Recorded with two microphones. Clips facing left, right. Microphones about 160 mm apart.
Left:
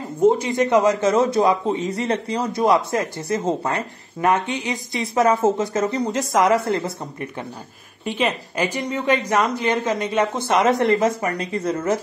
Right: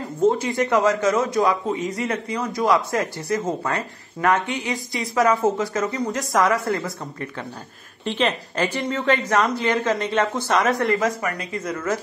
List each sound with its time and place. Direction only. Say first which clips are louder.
0.2 s speech: left 3 dB; 20° left (ahead or behind)
8.0 s a woman's voice: even; 10° left (ahead or behind); by 12.0 s 25° left (ahead or behind)